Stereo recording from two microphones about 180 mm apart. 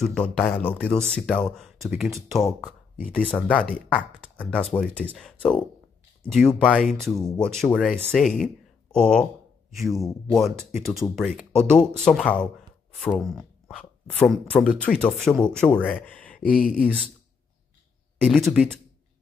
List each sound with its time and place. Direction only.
0.0 s speech: 5° left (ahead or behind)
10.3 s speech: centre (ahead or behind)
15.9 s a sound: 10° left (ahead or behind)
16.4 s speech: 50° left (ahead or behind)
16.8 s speech: 5° left (ahead or behind)
18.2 s a sound: centre (ahead or behind)